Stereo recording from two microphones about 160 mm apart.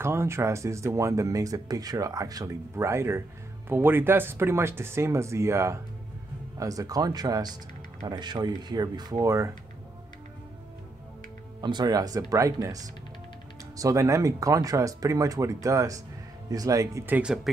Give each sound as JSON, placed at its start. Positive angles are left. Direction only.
{"t": 0.0, "sound": "speech", "side_deg": -15}
{"t": 11.6, "sound": "speech", "side_deg": -25}